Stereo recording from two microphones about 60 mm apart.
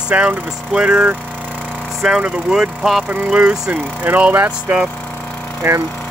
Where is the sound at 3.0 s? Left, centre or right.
Centre.